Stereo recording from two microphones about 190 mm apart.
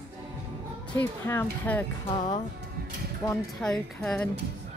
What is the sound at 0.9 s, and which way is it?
Speech, 10° left (ahead or behind).